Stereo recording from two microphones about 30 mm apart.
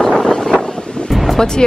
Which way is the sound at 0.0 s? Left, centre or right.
Centre.